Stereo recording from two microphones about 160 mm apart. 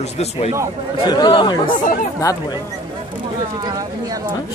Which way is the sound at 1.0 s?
25° left (ahead or behind).